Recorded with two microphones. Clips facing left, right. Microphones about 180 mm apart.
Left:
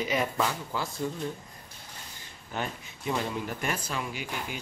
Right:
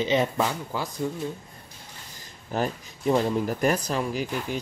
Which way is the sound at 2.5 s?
40° right (ahead or behind).